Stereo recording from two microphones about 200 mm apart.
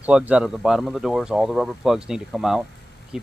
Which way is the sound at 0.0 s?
5° right (ahead or behind).